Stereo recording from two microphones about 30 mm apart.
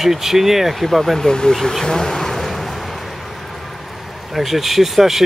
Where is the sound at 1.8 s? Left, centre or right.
Centre.